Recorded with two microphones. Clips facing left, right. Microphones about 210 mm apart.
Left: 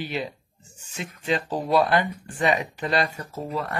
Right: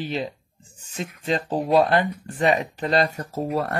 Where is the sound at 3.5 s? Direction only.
65° right (ahead or behind).